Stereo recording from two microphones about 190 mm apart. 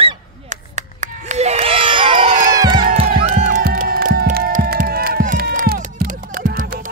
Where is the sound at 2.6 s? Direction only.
20° right (ahead or behind).